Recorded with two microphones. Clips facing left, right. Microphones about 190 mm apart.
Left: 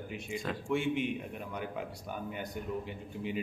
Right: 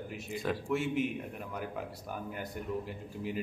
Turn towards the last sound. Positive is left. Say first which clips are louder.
# even
turn(degrees=0)  # may be behind; listen again after turning